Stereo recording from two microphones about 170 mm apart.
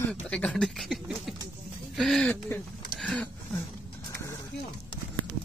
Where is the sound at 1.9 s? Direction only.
Centre (ahead or behind).